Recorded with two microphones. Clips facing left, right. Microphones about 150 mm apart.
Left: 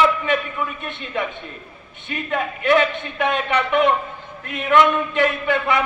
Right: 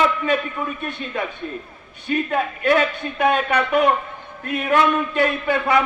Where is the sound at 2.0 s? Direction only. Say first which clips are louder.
Right 3 dB; 40° right (ahead or behind).